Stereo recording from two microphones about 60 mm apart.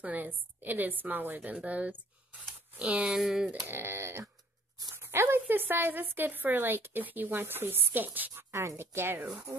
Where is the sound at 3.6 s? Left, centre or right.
Right.